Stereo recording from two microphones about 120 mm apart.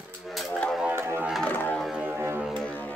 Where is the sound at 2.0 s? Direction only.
20° right (ahead or behind).